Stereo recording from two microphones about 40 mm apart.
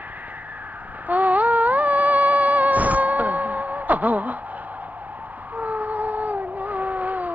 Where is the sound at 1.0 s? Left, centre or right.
Right.